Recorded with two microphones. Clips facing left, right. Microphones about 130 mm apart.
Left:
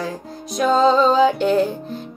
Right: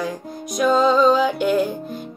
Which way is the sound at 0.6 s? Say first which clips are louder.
Left 1 dB; 30° left (ahead or behind).